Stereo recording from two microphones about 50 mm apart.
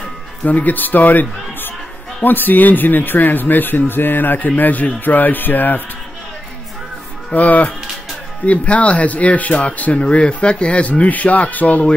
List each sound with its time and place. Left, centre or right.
0.5 s speech: left
7.3 s speech: left